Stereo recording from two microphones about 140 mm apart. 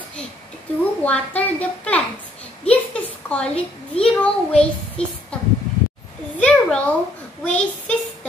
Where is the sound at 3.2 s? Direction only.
10° left (ahead or behind).